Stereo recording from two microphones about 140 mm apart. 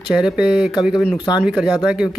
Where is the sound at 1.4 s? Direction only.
5° right (ahead or behind).